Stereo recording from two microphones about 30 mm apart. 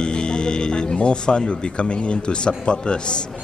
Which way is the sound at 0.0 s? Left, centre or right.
Left.